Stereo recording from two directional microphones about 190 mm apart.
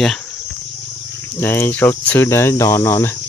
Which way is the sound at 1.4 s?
10° left (ahead or behind).